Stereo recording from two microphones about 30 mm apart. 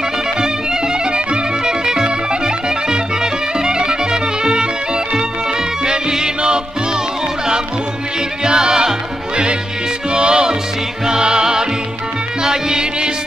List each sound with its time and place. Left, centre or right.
1.1 s music: right
8.5 s music: right
10.1 s music: right